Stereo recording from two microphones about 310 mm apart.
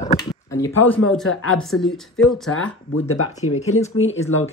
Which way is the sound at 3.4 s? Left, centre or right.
Left.